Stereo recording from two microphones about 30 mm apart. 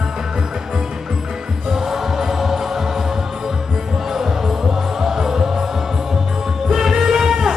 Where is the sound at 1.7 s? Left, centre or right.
Centre.